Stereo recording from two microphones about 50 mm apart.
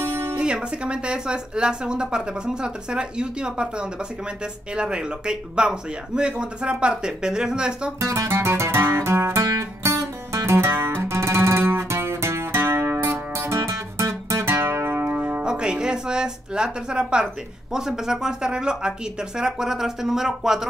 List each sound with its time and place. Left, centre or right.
0.0 s music: right
0.4 s speech: centre
8.0 s music: right
15.0 s music: right
15.4 s music: centre
17.7 s speech: centre